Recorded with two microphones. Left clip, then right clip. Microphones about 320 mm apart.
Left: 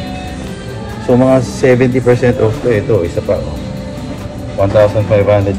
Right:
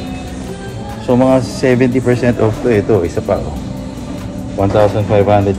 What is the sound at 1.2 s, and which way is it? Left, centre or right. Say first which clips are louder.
Speech: left 2 dB; centre.